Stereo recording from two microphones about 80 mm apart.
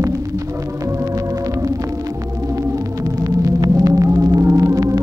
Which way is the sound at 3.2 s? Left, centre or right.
Right.